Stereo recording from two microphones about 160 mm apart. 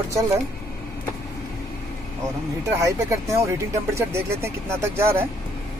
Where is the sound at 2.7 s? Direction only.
20° right (ahead or behind).